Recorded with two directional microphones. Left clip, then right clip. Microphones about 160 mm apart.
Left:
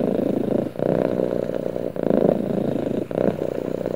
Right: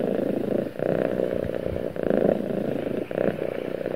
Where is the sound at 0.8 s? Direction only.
30° left (ahead or behind).